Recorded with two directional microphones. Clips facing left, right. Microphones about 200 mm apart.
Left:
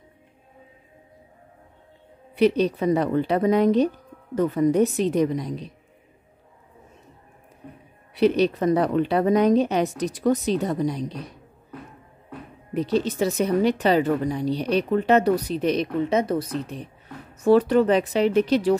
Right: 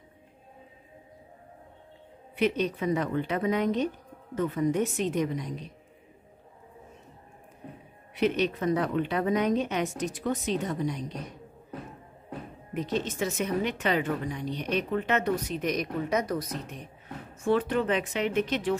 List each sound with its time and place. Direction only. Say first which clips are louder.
2.3 s speech: left 7 dB; 35° left (ahead or behind)
8.1 s speech: left 7 dB; 35° left (ahead or behind)
12.7 s speech: left 7 dB; 35° left (ahead or behind)